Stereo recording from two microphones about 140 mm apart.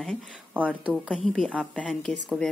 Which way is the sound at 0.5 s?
10° right (ahead or behind).